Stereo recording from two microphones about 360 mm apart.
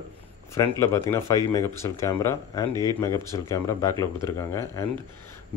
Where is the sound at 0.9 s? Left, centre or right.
Centre.